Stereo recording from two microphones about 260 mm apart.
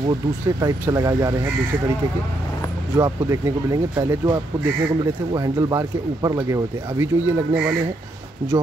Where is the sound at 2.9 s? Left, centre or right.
Centre.